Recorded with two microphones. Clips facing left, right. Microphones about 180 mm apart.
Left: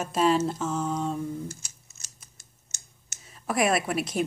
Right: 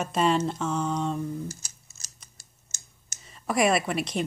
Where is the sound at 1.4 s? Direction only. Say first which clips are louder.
Right 1 dB; 40° right (ahead or behind).